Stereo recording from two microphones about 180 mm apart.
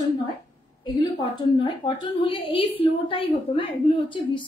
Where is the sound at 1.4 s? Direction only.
25° left (ahead or behind).